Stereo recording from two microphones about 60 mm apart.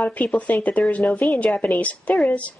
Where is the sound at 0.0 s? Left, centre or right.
Left.